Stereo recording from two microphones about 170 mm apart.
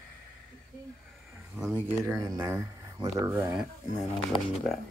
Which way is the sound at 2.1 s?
20° right (ahead or behind).